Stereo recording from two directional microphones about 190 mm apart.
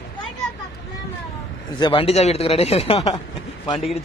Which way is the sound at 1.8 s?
30° left (ahead or behind).